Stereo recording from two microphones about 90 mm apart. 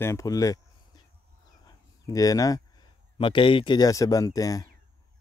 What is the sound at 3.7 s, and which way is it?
Speech, 40° left (ahead or behind).